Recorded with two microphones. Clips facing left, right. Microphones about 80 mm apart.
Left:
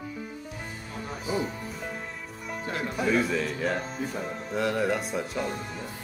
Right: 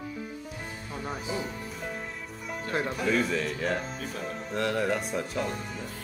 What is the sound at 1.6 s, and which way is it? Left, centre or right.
Music, centre.